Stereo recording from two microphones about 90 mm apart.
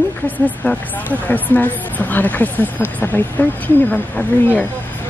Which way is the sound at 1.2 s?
20° left (ahead or behind).